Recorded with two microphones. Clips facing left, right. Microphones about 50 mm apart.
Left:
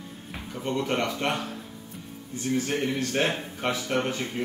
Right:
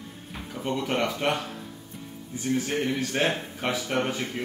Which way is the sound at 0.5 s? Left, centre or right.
Centre.